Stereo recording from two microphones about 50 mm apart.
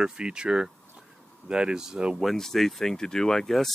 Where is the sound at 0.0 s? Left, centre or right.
Centre.